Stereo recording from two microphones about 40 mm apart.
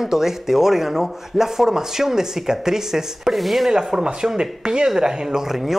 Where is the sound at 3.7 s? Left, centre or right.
Centre.